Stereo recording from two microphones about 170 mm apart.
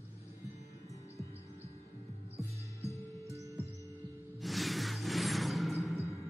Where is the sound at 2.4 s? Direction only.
15° left (ahead or behind).